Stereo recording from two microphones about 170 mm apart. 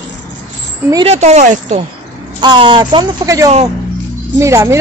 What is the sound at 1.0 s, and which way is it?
Speech, 40° right (ahead or behind).